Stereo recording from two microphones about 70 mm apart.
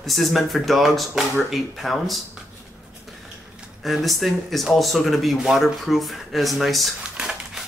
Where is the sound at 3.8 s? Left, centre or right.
Centre.